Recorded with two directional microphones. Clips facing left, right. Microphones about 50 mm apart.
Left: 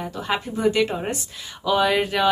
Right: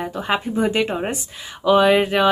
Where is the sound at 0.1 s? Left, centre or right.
Right.